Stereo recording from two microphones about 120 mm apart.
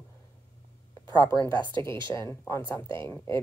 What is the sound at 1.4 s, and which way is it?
Speech, 40° right (ahead or behind).